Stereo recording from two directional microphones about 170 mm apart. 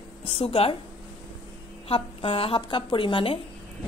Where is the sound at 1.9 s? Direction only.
30° left (ahead or behind).